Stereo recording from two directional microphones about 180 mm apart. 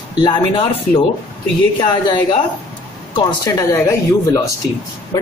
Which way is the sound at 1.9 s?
25° left (ahead or behind).